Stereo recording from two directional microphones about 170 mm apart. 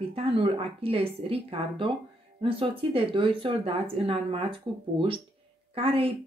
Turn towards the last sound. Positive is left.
turn(degrees=-35)  # may be behind; listen again after turning